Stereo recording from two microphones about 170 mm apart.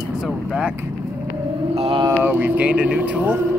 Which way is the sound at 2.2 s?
10° right (ahead or behind).